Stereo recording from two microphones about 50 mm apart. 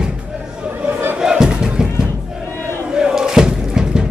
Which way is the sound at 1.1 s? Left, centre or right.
Centre.